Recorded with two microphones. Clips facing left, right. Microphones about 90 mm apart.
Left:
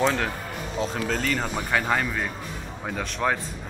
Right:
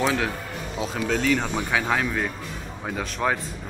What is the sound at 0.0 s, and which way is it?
Speech, centre (ahead or behind).